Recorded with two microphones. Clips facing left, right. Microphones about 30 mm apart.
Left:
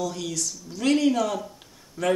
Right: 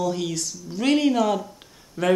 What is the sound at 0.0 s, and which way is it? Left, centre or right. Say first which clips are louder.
Speech: right 4 dB; right.